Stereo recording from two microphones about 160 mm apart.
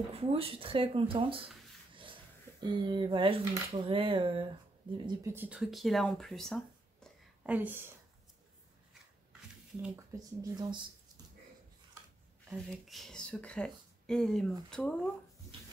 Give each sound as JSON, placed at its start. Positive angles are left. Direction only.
{"t": 0.1, "sound": "speech", "side_deg": -35}
{"t": 2.6, "sound": "speech", "side_deg": -30}
{"t": 5.3, "sound": "speech", "side_deg": -10}
{"t": 5.6, "sound": "speech", "side_deg": 0}
{"t": 7.4, "sound": "speech", "side_deg": -10}
{"t": 9.9, "sound": "speech", "side_deg": -25}
{"t": 12.6, "sound": "speech", "side_deg": 0}